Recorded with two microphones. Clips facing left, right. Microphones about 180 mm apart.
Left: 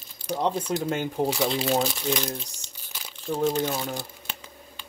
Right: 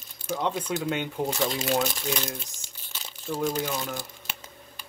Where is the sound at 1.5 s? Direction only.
30° left (ahead or behind).